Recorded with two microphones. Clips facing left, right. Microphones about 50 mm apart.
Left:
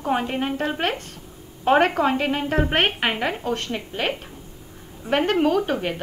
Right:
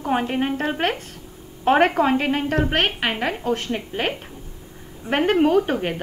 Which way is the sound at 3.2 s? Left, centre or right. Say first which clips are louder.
Right 1 dB; centre.